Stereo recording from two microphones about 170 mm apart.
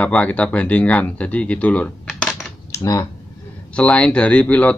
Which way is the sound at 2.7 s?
20° left (ahead or behind).